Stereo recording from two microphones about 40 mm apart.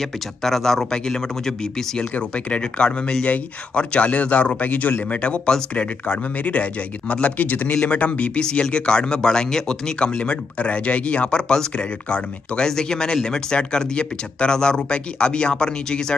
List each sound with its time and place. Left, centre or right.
0.0 s speech: centre
2.0 s speech: left
12.6 s speech: centre